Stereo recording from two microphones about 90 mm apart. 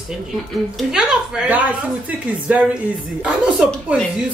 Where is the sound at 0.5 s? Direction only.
5° right (ahead or behind).